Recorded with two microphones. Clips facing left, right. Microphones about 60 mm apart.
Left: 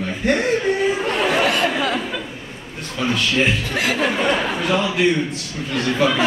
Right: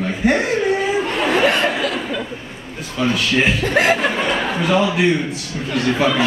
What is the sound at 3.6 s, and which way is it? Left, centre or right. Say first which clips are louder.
Speech: right 6 dB; right.